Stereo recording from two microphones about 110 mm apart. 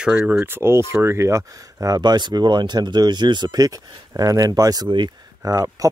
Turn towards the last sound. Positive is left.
turn(degrees=-35)  # may be behind; listen again after turning